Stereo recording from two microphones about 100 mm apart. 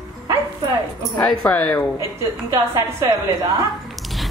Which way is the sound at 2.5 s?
30° right (ahead or behind).